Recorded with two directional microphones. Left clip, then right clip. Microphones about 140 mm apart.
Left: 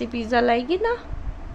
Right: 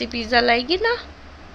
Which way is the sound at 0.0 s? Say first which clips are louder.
Right 2 dB; 20° left (ahead or behind).